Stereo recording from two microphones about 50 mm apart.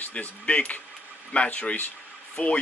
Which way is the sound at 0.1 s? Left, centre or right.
Left.